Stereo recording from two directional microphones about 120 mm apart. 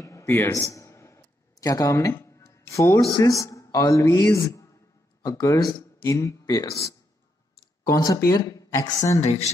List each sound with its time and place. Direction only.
0.0 s a sound: 25° left (ahead or behind)
5.2 s speech: 30° left (ahead or behind)
7.9 s speech: 30° left (ahead or behind)
9.2 s speech: 65° left (ahead or behind)